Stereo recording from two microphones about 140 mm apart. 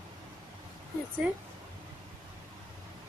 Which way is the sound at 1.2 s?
10° right (ahead or behind).